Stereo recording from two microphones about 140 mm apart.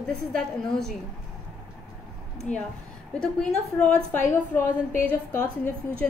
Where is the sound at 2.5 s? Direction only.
55° left (ahead or behind).